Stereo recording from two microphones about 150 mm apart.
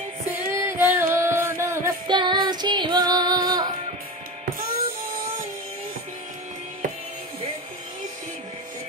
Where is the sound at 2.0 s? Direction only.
30° right (ahead or behind).